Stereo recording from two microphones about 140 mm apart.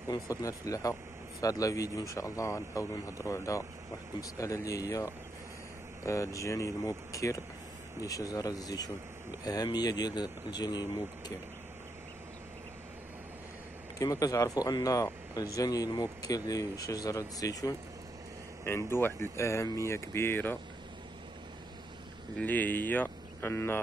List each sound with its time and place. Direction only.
0.1 s speech: 25° left (ahead or behind)
13.9 s speech: 25° left (ahead or behind)
22.4 s speech: 10° left (ahead or behind)